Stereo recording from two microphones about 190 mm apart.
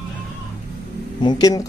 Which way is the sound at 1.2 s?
20° left (ahead or behind).